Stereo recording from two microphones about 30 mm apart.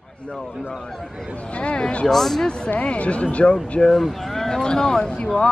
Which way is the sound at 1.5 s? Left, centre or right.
Left.